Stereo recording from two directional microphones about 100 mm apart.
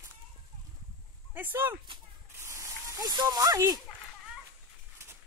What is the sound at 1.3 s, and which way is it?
Speech, 20° right (ahead or behind).